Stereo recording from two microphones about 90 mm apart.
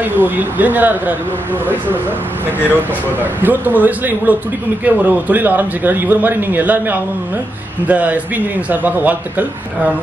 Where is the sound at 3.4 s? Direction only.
20° right (ahead or behind).